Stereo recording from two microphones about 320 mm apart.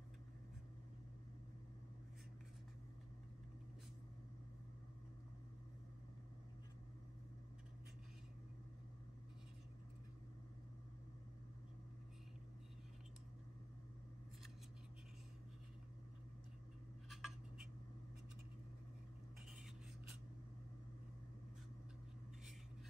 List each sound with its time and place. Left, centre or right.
17.1 s cutlery: centre